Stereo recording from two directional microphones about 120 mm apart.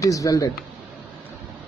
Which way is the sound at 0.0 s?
30° left (ahead or behind).